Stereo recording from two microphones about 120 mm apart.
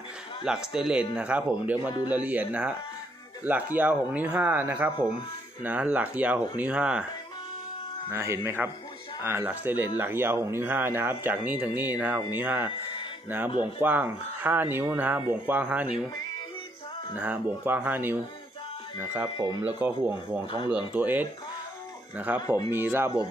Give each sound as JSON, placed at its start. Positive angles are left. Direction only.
{"t": 0.5, "sound": "speech", "side_deg": -5}
{"t": 8.1, "sound": "speech", "side_deg": -20}
{"t": 13.7, "sound": "speech", "side_deg": -15}
{"t": 17.2, "sound": "speech", "side_deg": -10}
{"t": 19.6, "sound": "speech", "side_deg": -15}